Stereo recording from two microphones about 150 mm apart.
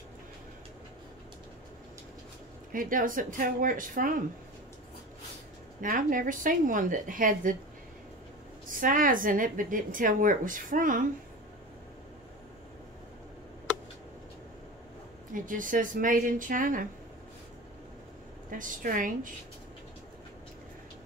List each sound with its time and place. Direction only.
2.7 s a woman's voice: 65° right (ahead or behind)
5.8 s a woman's voice: 65° right (ahead or behind)
8.6 s a woman's voice: 65° right (ahead or behind)
15.3 s a woman's voice: 65° right (ahead or behind)
18.5 s a woman's voice: 65° right (ahead or behind)